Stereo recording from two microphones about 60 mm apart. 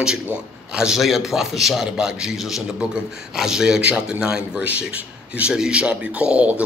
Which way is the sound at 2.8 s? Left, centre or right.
Centre.